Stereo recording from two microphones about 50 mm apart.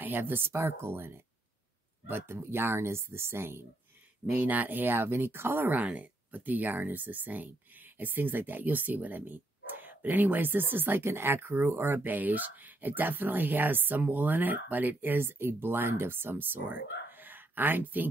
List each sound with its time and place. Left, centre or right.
0.0 s speech: right
4.3 s speech: right
5.8 s speech: right
12.0 s speech: right